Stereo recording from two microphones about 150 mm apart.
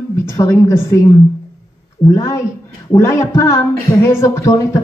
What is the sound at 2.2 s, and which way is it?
A woman's voice, 20° left (ahead or behind).